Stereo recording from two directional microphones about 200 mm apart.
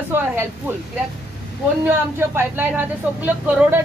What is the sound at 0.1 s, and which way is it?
Speech, 10° right (ahead or behind).